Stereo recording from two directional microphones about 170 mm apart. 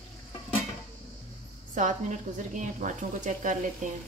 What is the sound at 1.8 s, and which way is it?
Speech, 45° right (ahead or behind).